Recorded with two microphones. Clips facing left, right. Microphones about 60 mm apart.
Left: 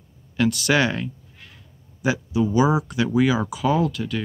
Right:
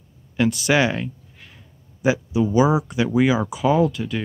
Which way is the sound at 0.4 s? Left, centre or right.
Right.